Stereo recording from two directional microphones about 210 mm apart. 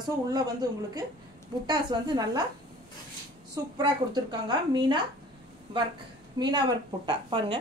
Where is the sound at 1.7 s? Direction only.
20° right (ahead or behind).